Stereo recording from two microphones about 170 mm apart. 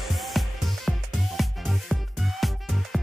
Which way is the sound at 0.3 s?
Centre (ahead or behind).